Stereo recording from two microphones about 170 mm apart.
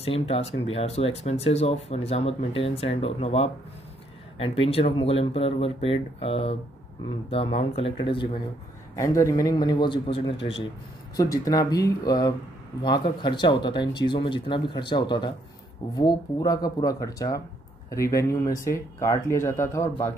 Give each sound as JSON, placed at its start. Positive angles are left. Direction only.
{"t": 0.0, "sound": "speech", "side_deg": 35}
{"t": 8.9, "sound": "speech", "side_deg": 20}
{"t": 11.1, "sound": "speech", "side_deg": 20}